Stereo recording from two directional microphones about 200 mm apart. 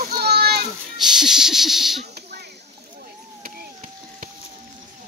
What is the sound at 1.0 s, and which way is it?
Speech, centre (ahead or behind).